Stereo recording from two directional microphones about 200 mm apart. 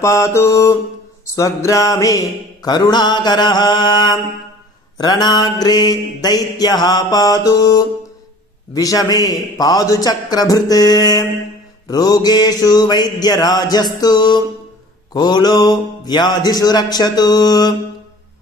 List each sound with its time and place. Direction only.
0.0 s mantra: 15° left (ahead or behind)